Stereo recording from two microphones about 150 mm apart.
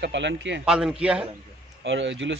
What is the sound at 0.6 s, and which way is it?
Speech, 5° right (ahead or behind).